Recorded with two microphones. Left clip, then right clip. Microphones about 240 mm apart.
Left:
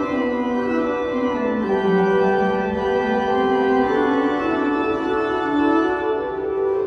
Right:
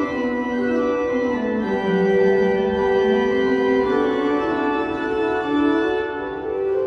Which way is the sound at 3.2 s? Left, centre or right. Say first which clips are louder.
Even; centre.